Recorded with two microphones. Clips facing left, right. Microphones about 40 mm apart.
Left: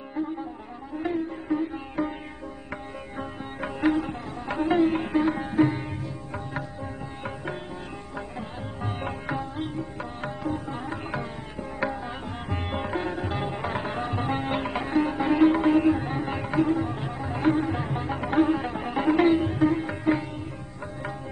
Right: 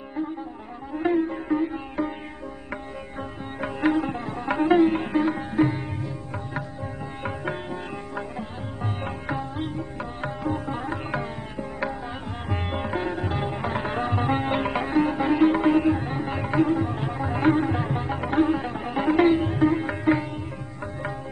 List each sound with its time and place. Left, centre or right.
0.9 s sitar: right; by 2.1 s centre
3.2 s sitar: centre
4.5 s sitar: centre
8.4 s sitar: centre
10.4 s sitar: centre
12.4 s music: centre
13.8 s music: centre